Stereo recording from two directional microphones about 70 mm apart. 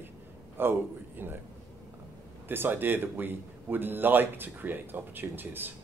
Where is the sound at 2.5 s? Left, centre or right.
Right.